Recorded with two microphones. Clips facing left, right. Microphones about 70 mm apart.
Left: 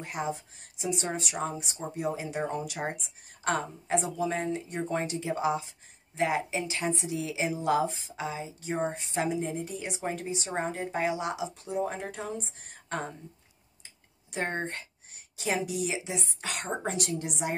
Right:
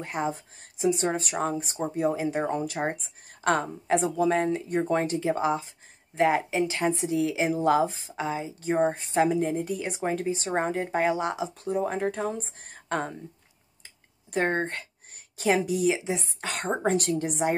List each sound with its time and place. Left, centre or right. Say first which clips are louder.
0.0 s a woman's voice: right 4 dB; right
3.4 s a woman's voice: right 5 dB; right
14.3 s a woman's voice: right 6 dB; right